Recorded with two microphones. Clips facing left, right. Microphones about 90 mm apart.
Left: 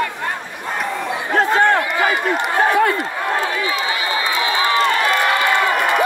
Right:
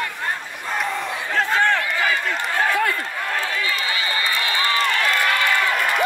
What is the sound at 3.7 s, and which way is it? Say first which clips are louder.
Run: left 4 dB; 15° left (ahead or behind).